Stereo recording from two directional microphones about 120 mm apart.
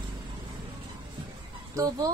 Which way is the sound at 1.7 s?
30° right (ahead or behind).